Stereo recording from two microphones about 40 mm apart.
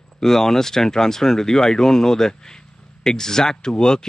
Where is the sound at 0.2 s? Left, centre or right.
Centre.